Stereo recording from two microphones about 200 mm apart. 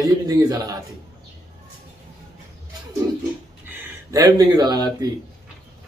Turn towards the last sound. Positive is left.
turn(degrees=-20)  # may be behind; listen again after turning